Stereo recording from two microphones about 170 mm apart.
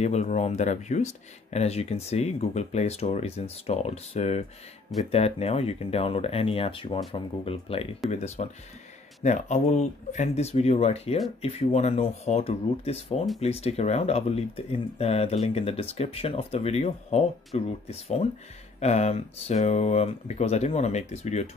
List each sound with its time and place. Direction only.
0.0 s speech: 40° left (ahead or behind)
8.1 s speech: 45° left (ahead or behind)